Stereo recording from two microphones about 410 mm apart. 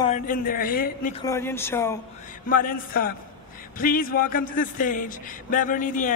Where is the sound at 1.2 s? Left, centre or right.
Centre.